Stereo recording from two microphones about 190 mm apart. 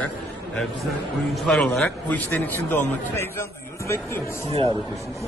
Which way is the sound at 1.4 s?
Centre (ahead or behind).